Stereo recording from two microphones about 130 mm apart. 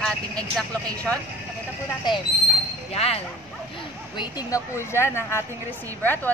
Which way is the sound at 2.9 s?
50° left (ahead or behind).